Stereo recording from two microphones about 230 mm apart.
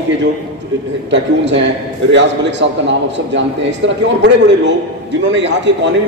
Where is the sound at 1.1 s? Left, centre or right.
Right.